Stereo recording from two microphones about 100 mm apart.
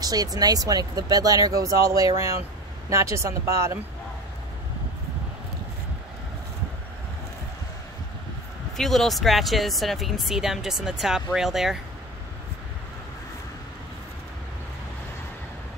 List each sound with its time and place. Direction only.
0.0 s speech: 40° right (ahead or behind)
8.7 s speech: 5° left (ahead or behind)